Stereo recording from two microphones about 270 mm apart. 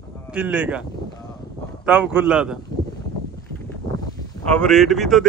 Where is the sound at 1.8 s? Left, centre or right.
Centre.